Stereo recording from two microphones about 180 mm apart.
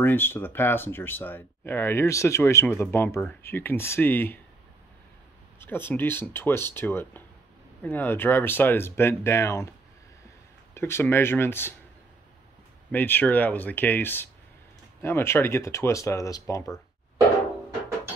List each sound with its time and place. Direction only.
0.0 s speech: 10° left (ahead or behind)
5.6 s speech: 10° left (ahead or behind)
10.7 s speech: 15° left (ahead or behind)
12.9 s speech: 10° left (ahead or behind)